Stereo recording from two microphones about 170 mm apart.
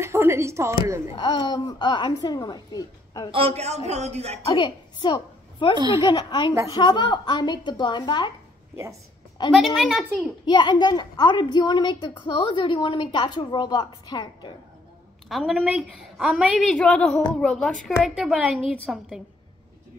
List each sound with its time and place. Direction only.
0.0 s speech: 15° right (ahead or behind)
1.1 s a woman's voice: 25° left (ahead or behind)
3.3 s a man's voice: 35° right (ahead or behind)
4.5 s a woman's voice: 30° left (ahead or behind)
9.6 s a woman's voice: centre (ahead or behind)
10.4 s a woman's voice: 25° left (ahead or behind)
15.2 s a woman's voice: centre (ahead or behind)